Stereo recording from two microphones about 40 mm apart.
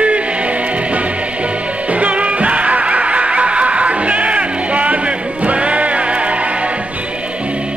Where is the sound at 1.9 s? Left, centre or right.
Right.